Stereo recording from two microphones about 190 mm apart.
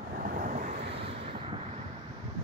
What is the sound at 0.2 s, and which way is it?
Vehicle, 45° right (ahead or behind).